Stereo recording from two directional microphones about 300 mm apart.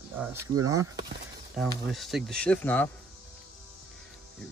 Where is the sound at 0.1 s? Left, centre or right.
Centre.